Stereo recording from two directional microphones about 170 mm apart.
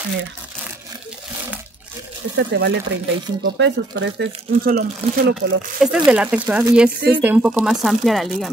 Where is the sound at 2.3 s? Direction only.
90° right; by 5.3 s 60° right (ahead or behind).